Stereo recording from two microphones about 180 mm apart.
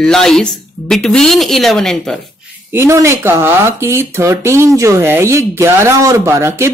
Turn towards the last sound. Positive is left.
turn(degrees=-15)  # may be behind; listen again after turning